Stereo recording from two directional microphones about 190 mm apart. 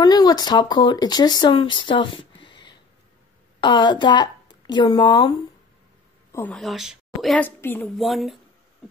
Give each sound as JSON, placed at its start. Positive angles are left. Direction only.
{"t": 0.0, "sound": "a woman's voice", "side_deg": 20}
{"t": 6.3, "sound": "a woman's voice", "side_deg": 5}
{"t": 7.9, "sound": "speech", "side_deg": 0}